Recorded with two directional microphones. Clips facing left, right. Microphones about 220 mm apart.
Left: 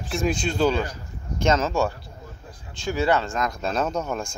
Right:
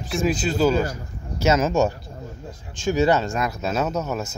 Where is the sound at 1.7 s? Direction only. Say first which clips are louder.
Right 4 dB; 20° right (ahead or behind).